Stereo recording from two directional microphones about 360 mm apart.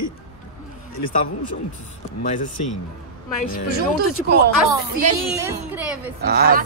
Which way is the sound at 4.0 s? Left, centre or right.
Right.